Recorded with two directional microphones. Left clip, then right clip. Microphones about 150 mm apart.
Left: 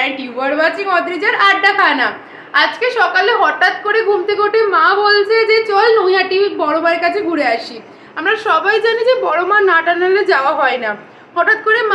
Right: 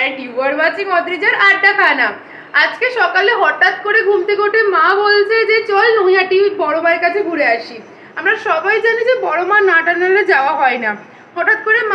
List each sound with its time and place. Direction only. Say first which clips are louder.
0.4 s a woman's voice: even; 20° left (ahead or behind)